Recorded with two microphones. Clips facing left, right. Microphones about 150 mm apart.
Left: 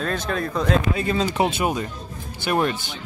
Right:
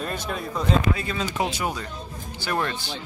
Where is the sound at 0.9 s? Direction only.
30° left (ahead or behind).